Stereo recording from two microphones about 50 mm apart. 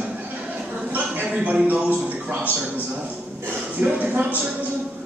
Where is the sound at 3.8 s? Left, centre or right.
Right.